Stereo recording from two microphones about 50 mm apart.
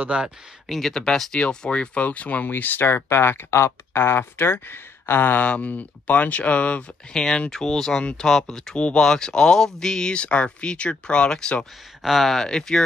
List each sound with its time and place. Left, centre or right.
0.0 s speech: centre
0.7 s speech: centre; by 5.4 s left
5.4 s speech: left
7.1 s speech: centre
8.7 s speech: left
12.0 s speech: centre
12.4 s speech: centre